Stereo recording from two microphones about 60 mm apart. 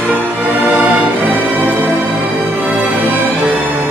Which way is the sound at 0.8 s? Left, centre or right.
Right.